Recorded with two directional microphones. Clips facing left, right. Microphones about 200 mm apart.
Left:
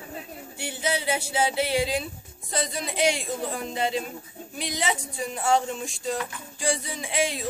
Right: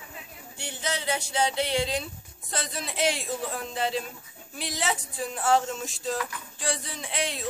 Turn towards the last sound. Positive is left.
turn(degrees=0)  # may be behind; listen again after turning